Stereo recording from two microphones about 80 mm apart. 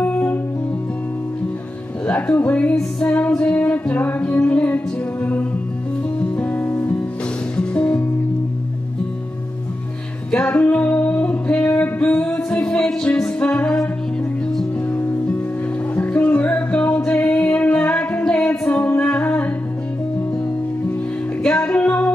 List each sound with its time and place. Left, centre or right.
0.0 s music: left
2.0 s music: centre
10.3 s music: centre
14.9 s music: left
18.7 s singing: centre
21.4 s music: centre